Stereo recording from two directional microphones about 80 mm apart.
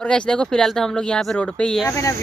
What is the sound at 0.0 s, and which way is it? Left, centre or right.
Speech, centre.